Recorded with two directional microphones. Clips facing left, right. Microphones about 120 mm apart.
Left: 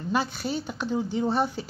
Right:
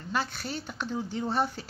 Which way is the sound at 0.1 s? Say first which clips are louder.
Left 5 dB; 5° left (ahead or behind).